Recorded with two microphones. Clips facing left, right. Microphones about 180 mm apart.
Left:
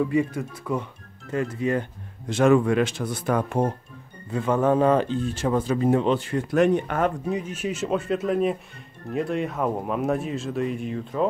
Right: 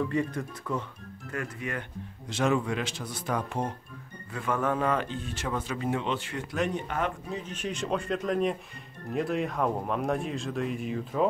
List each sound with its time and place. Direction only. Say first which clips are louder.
0.1 s speech: left 6 dB; 10° left (ahead or behind)
1.3 s speech: left 10 dB; 25° left (ahead or behind)
2.2 s speech: left 9 dB; 50° left (ahead or behind)
4.3 s speech: left 8 dB; 30° left (ahead or behind)
6.5 s speech: left 10 dB; 55° left (ahead or behind)
7.2 s speech: left 7 dB; 10° left (ahead or behind)